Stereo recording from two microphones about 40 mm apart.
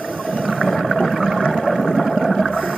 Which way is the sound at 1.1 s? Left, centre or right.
Centre.